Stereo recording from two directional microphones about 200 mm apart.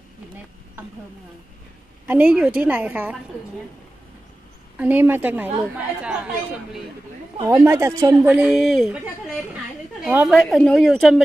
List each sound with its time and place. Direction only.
2.0 s a woman's voice: 10° right (ahead or behind)
4.7 s a woman's voice: 10° right (ahead or behind)
7.4 s a woman's voice: 15° right (ahead or behind)
10.0 s a woman's voice: 5° right (ahead or behind)